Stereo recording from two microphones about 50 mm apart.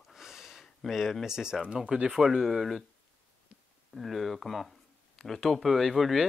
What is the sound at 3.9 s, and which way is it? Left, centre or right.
Speech, centre.